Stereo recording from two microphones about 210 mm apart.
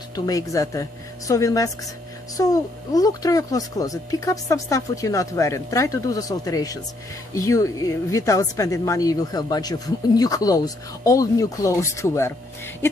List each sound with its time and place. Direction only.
0.1 s a woman's voice: 15° left (ahead or behind)